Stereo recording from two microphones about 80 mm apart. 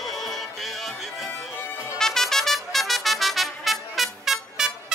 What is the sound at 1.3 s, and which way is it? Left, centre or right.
Music, left.